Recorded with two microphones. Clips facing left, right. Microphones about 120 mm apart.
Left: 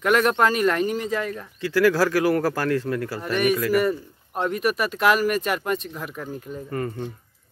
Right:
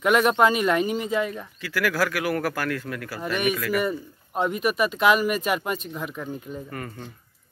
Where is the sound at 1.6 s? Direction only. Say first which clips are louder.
Left 6 dB; 30° left (ahead or behind).